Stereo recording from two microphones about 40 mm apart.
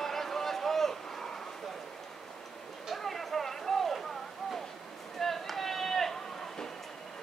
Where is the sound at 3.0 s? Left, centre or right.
Centre.